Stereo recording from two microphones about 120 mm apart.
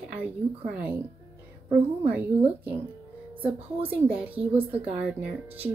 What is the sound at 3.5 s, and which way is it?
Speech, 50° right (ahead or behind).